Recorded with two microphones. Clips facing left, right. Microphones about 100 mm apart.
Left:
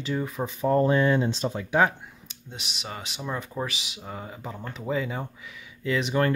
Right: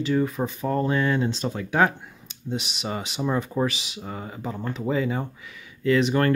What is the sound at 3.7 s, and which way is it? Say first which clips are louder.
Speech: right 3 dB; 10° left (ahead or behind).